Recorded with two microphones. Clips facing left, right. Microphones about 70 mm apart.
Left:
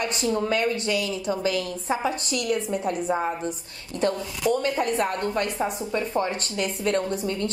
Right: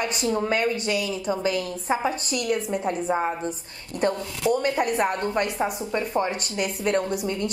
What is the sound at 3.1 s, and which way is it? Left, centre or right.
A woman's voice, right.